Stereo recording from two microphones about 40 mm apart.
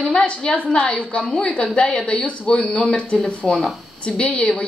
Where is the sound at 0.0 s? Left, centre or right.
Left.